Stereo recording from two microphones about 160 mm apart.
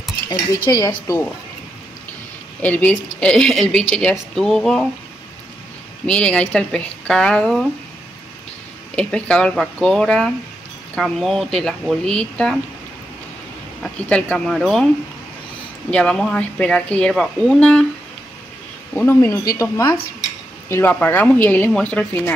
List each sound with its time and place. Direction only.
0.7 s a woman's voice: 25° left (ahead or behind)
2.6 s speech: 10° left (ahead or behind)
6.0 s speech: 5° left (ahead or behind)
8.9 s speech: 5° left (ahead or behind)
13.8 s speech: 10° left (ahead or behind)
15.9 s speech: 5° left (ahead or behind)
18.9 s a woman's voice: 15° left (ahead or behind)